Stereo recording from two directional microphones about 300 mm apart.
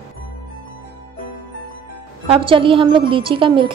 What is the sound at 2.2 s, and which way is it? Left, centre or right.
A woman's voice, centre.